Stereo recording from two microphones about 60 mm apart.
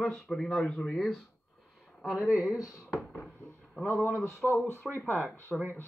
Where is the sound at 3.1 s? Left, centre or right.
Centre.